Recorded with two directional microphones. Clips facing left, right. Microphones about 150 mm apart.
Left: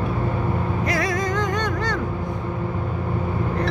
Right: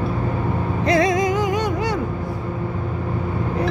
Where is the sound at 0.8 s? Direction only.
25° right (ahead or behind).